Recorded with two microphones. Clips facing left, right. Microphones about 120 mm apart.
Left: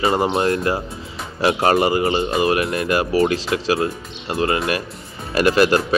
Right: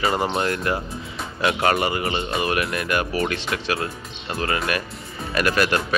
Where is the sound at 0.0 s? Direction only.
25° left (ahead or behind).